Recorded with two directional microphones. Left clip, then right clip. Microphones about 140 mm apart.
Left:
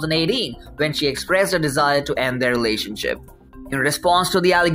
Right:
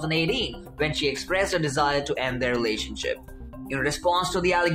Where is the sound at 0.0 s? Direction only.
25° left (ahead or behind).